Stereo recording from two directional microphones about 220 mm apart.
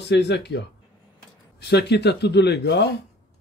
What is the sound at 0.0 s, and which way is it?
Speech, 50° left (ahead or behind).